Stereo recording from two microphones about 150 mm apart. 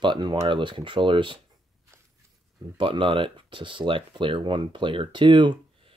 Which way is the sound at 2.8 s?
35° right (ahead or behind).